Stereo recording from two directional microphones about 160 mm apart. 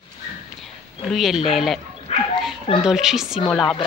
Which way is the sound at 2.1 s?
40° left (ahead or behind).